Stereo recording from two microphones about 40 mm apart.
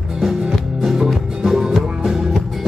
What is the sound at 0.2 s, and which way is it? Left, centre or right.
Music, centre.